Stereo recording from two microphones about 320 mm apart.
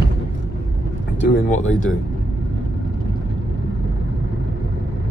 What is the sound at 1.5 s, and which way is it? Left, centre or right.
Speech, left.